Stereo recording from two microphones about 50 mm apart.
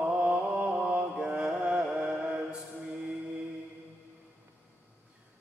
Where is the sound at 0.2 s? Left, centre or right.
Right.